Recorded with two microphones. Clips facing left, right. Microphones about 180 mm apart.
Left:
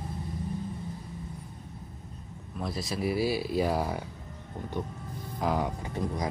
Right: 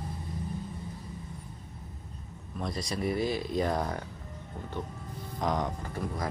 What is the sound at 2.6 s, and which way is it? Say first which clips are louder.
Speech: left 1 dB; 5° left (ahead or behind).